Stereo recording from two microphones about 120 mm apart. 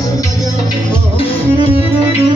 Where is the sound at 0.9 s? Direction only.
50° left (ahead or behind).